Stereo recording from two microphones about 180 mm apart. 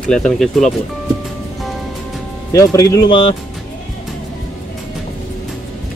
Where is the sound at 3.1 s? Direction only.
30° left (ahead or behind).